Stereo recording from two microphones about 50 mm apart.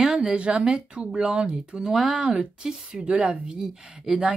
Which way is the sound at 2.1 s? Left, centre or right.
Centre.